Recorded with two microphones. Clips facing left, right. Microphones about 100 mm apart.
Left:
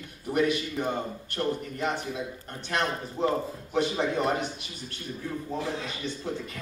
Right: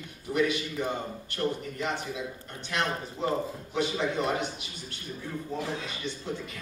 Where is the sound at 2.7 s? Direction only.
45° left (ahead or behind).